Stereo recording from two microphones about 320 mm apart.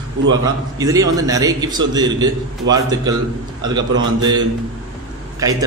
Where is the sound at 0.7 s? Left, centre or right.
Centre.